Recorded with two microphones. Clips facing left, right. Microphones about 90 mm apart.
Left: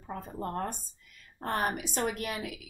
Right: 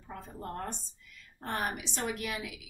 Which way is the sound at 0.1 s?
45° left (ahead or behind).